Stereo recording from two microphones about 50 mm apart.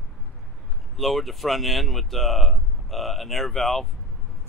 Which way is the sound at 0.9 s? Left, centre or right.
Centre.